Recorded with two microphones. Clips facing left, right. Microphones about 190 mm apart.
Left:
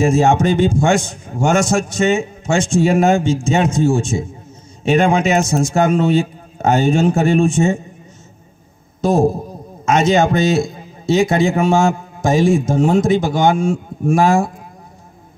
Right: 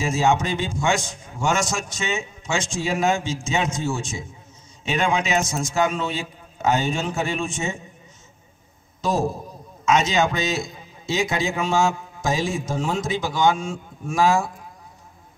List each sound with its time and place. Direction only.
0.0 s a man's voice: 50° left (ahead or behind)
9.8 s a man's voice: 50° left (ahead or behind)